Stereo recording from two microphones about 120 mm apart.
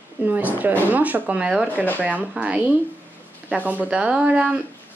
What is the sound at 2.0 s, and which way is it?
Speech, 15° right (ahead or behind).